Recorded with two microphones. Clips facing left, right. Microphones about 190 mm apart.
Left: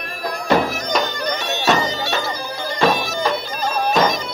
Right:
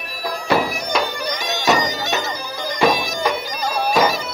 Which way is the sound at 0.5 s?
10° right (ahead or behind).